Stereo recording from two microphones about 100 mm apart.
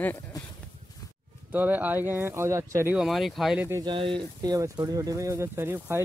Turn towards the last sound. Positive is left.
turn(degrees=-25)  # may be behind; listen again after turning